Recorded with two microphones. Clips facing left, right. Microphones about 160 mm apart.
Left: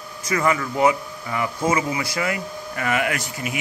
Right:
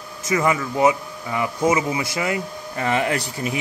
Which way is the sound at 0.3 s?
20° right (ahead or behind).